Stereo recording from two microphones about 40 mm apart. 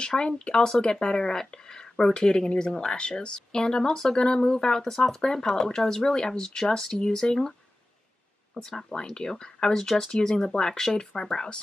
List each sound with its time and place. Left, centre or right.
0.0 s speech: left
6.2 s speech: centre
8.5 s speech: centre